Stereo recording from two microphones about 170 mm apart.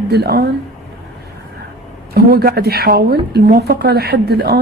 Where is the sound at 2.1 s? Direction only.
65° right (ahead or behind).